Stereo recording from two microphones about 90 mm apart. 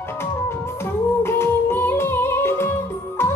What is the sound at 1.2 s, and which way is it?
Music, 25° left (ahead or behind).